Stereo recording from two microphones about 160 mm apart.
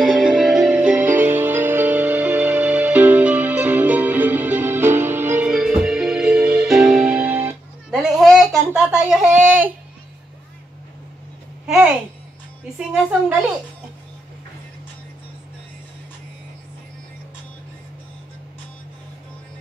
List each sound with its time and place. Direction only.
0.0 s music: centre (ahead or behind)
9.3 s a sound: 55° right (ahead or behind)
12.7 s a woman's voice: centre (ahead or behind)